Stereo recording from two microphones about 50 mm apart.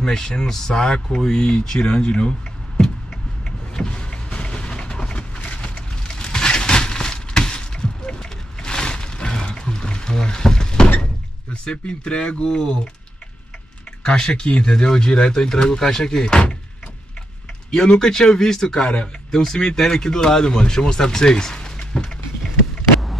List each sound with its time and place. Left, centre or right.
0.0 s speech: centre
3.4 s vehicle: centre
11.6 s speech: left
14.0 s speech: centre
17.6 s speech: centre